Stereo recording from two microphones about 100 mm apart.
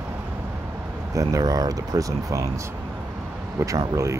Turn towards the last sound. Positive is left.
turn(degrees=-30)  # may be behind; listen again after turning